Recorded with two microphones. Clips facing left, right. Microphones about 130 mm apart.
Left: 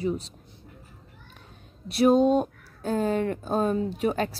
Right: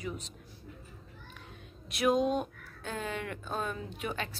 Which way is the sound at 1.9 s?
35° left (ahead or behind).